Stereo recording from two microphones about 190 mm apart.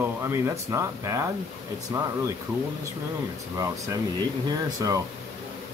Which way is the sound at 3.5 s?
15° right (ahead or behind).